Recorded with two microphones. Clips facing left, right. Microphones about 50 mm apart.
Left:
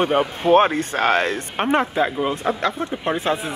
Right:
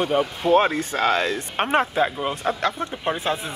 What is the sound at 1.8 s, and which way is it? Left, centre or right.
Speech, centre.